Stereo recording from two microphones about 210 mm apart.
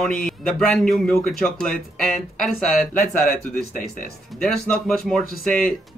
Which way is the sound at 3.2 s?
45° left (ahead or behind).